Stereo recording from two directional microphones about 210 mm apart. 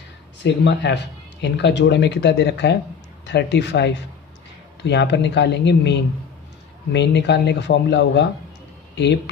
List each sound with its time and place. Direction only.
0.4 s speech: 55° left (ahead or behind)